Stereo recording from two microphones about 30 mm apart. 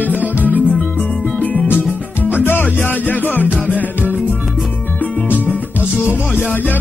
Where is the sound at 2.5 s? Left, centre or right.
Left.